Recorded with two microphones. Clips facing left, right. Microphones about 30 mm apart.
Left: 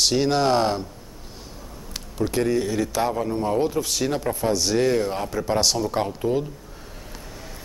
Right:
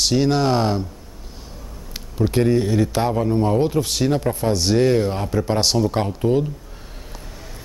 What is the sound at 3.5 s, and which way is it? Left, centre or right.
Speech, right.